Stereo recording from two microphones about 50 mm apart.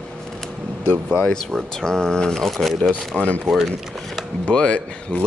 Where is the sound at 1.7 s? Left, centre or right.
Centre.